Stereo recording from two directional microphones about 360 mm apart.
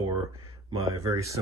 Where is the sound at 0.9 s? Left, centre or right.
Centre.